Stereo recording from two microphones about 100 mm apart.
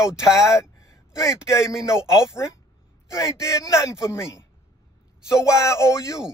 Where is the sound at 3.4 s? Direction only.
30° left (ahead or behind).